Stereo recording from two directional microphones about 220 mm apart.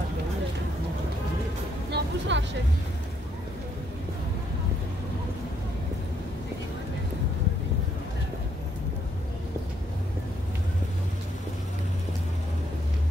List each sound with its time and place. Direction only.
1.9 s music: 50° right (ahead or behind)